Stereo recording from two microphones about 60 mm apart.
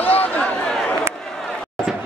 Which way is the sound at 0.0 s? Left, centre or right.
Left.